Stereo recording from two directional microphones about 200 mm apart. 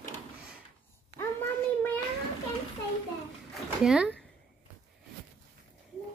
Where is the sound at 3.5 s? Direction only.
5° right (ahead or behind).